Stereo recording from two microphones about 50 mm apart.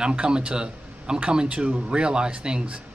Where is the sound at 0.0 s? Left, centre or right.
Centre.